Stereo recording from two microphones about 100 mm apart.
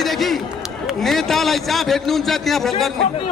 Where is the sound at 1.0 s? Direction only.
5° left (ahead or behind).